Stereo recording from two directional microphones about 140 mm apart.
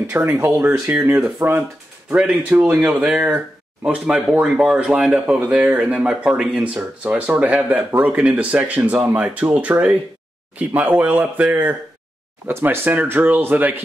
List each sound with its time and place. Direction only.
0.1 s speech: 15° right (ahead or behind)